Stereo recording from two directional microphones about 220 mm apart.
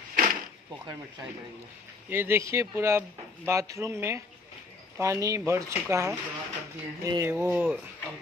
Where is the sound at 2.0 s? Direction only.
10° right (ahead or behind).